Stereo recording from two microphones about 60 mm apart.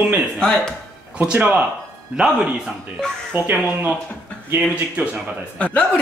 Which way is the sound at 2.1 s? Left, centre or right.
Centre.